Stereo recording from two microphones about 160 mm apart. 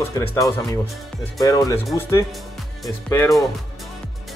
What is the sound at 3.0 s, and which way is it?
Speech, 15° left (ahead or behind).